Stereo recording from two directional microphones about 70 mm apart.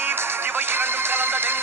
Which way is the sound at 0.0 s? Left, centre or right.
Right.